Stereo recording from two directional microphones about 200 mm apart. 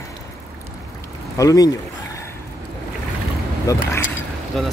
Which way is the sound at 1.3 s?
15° left (ahead or behind).